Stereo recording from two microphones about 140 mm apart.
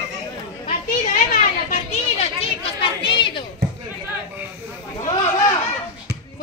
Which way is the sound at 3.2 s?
35° left (ahead or behind).